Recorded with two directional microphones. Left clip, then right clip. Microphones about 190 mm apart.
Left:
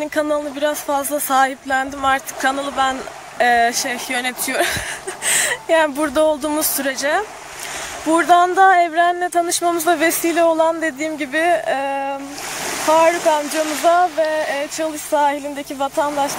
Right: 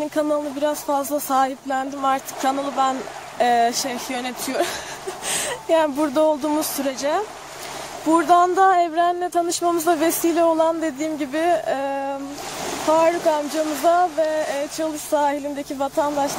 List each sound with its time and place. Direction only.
0.0 s speech: 5° right (ahead or behind)